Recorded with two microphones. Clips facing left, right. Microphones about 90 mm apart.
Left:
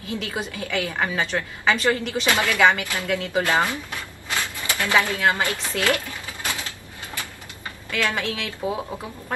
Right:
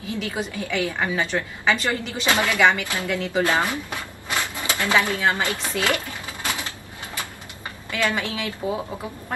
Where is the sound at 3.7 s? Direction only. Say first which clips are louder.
Right 2 dB; 20° right (ahead or behind).